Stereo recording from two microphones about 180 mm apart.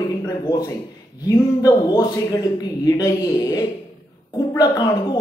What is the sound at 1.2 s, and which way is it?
Speech, 20° left (ahead or behind).